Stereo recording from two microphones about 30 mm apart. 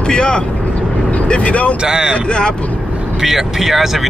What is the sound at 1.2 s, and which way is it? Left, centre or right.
Speech, left.